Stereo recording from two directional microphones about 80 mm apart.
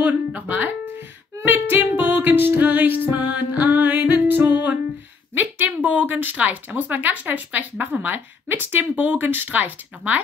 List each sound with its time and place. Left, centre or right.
0.0 s music: right
5.3 s a woman's voice: right